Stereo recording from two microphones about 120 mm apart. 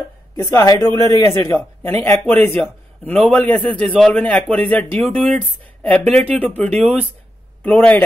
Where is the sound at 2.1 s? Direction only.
15° left (ahead or behind).